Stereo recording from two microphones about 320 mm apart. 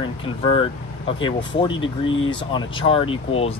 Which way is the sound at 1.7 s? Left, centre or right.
Left.